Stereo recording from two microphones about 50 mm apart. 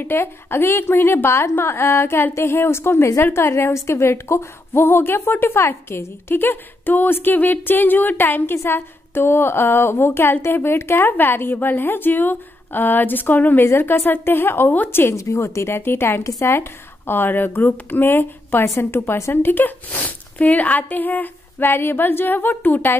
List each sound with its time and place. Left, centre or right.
0.0 s a woman's voice: left
4.8 s a woman's voice: left
11.1 s a woman's voice: left
13.7 s a woman's voice: left
15.1 s speech: left
16.3 s a woman's voice: left
16.5 s a woman's voice: left
19.0 s a woman's voice: left
19.3 s a woman's voice: left